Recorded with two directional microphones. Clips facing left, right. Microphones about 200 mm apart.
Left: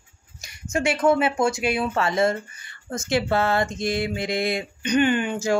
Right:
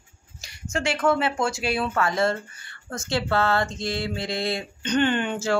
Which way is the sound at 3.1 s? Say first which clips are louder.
Left 2 dB; 20° left (ahead or behind).